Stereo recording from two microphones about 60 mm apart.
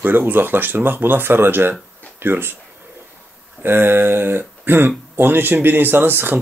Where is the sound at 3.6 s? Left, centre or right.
Right.